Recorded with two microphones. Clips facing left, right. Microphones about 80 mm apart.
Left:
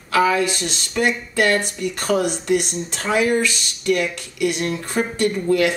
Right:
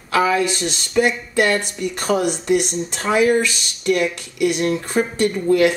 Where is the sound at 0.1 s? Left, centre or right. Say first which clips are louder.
Even; centre.